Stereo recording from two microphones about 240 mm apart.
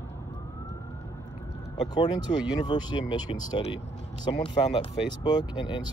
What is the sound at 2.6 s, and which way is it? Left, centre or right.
Speech, centre.